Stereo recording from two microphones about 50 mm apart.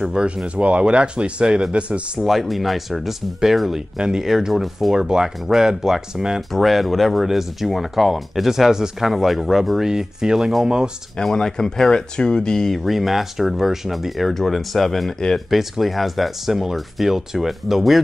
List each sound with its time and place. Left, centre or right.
0.2 s speech: centre
2.1 s speech: centre
11.2 s speech: centre